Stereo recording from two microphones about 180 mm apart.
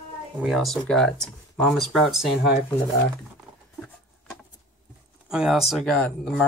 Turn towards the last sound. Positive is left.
turn(degrees=5)  # may be behind; listen again after turning